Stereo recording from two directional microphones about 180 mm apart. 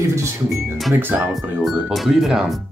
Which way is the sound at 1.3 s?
Centre (ahead or behind).